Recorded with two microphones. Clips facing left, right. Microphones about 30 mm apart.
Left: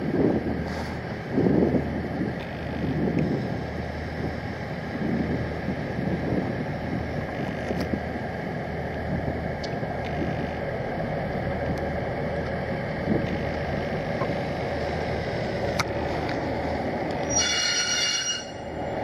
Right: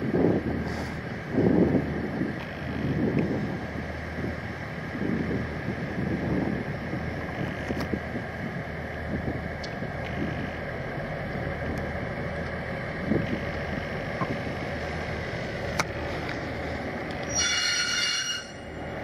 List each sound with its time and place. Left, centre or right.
17.3 s train: left